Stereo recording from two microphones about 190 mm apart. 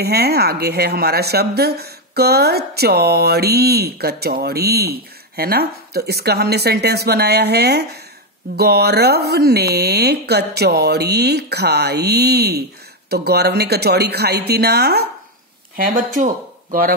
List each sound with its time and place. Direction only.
0.0 s speech: 55° right (ahead or behind)